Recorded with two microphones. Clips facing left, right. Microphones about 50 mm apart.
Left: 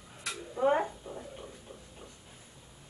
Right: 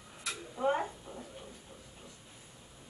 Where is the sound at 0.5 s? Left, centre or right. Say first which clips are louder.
Left 4 dB; centre.